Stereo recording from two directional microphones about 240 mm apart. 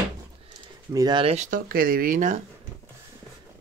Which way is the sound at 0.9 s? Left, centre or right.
Centre.